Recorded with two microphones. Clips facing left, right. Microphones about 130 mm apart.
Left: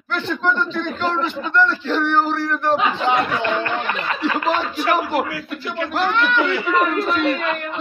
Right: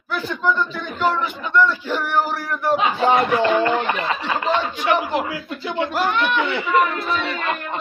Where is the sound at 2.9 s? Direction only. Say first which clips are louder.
Right 3 dB; 40° right (ahead or behind).